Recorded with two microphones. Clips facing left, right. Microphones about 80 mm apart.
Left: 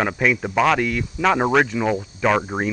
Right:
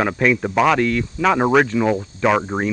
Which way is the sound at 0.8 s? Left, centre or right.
Centre.